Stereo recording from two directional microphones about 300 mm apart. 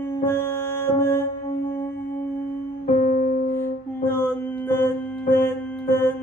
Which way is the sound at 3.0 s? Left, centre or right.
Left.